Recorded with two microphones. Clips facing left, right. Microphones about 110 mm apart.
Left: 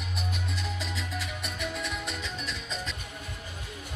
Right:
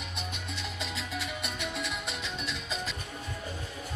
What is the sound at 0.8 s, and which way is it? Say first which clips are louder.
Music: left 1 dB; centre (ahead or behind).